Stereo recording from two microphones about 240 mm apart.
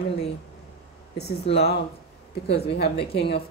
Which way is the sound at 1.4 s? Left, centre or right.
Left.